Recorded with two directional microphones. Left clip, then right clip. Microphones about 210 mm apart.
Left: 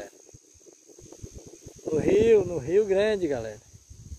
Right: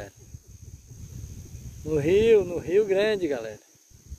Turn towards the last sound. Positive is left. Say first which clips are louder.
# even
turn(degrees=-10)  # may be behind; listen again after turning